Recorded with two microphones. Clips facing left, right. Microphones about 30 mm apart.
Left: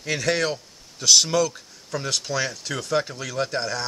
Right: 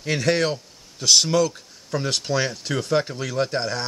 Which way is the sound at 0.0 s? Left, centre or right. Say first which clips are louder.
Right 2 dB; centre.